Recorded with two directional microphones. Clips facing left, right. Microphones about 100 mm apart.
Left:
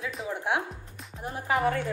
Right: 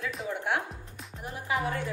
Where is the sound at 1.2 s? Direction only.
35° left (ahead or behind).